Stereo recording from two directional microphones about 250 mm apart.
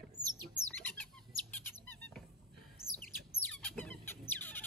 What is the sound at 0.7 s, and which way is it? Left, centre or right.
Chicken, centre.